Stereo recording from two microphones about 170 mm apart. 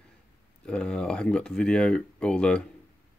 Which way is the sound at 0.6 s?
5° left (ahead or behind).